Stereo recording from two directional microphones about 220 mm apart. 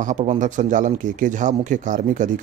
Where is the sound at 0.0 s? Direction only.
30° right (ahead or behind).